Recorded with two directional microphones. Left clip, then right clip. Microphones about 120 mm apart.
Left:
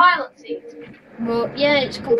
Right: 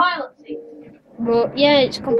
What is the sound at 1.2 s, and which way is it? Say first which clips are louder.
Speech: right 3 dB; 40° right (ahead or behind).